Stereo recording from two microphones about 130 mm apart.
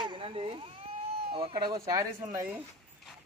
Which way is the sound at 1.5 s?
30° right (ahead or behind).